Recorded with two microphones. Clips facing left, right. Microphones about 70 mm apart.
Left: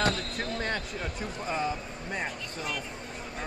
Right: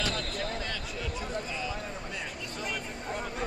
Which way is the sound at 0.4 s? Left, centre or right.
Left.